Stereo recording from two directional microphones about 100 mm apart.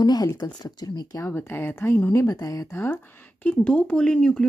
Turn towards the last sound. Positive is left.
turn(degrees=10)  # may be behind; listen again after turning